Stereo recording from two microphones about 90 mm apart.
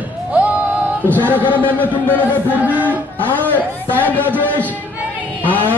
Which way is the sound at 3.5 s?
20° left (ahead or behind).